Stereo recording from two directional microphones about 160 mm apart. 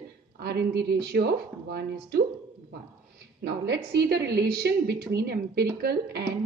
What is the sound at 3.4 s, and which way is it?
Speech, 80° right.